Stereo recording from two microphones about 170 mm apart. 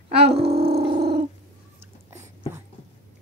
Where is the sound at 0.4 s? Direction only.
35° right (ahead or behind).